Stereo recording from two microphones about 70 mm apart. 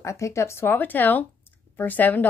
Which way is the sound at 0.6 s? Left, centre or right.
Left.